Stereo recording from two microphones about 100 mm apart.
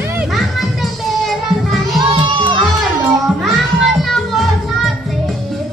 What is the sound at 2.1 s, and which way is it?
Music, 55° right (ahead or behind).